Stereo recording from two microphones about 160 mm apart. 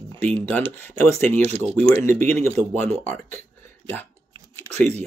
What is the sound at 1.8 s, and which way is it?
Speech, 10° left (ahead or behind).